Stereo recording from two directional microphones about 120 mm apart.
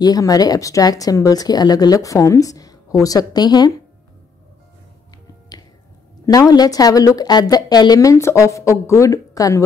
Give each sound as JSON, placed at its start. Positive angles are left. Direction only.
{"t": 0.0, "sound": "a woman's voice", "side_deg": 30}
{"t": 6.2, "sound": "a woman's voice", "side_deg": 30}